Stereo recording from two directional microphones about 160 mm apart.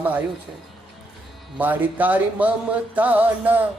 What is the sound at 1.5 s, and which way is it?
Speech, 10° right (ahead or behind).